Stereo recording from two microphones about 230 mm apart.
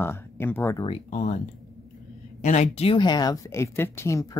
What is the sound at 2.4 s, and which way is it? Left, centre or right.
Speech, left.